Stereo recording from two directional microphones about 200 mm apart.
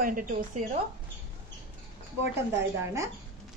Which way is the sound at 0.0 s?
45° right (ahead or behind).